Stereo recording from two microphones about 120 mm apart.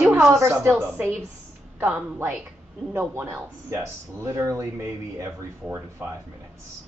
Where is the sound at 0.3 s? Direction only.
20° right (ahead or behind).